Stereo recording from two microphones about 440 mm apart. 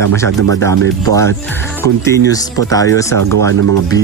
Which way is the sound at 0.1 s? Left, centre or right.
Centre.